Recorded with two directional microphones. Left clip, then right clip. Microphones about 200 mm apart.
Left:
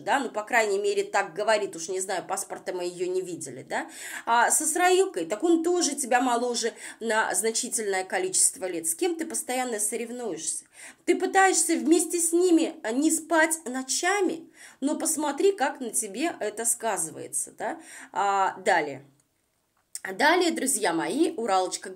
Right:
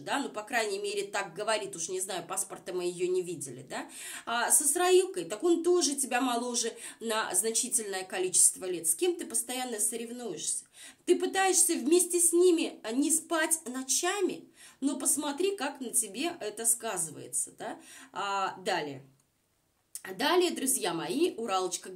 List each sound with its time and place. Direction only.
0.0 s speech: 15° left (ahead or behind)
20.0 s speech: 20° left (ahead or behind)